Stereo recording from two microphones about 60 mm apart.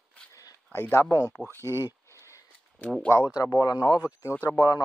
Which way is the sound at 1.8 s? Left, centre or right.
Left.